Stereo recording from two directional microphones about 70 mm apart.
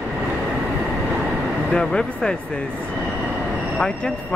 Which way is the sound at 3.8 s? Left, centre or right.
Centre.